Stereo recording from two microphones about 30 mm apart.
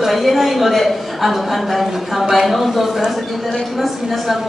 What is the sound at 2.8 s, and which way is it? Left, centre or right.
Speech, centre.